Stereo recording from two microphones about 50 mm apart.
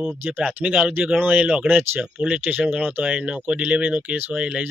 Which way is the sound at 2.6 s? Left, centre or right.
Right.